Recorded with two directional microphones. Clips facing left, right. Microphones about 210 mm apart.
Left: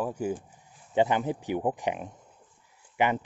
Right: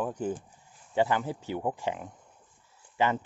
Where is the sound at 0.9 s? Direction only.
20° left (ahead or behind).